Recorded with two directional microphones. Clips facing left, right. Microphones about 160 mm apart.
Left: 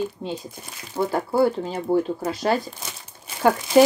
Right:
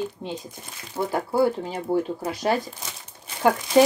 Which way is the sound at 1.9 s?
10° left (ahead or behind).